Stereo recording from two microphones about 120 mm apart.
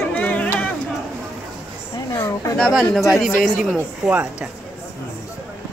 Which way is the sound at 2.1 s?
25° left (ahead or behind).